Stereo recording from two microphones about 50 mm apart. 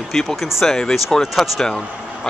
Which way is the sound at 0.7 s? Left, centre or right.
Centre.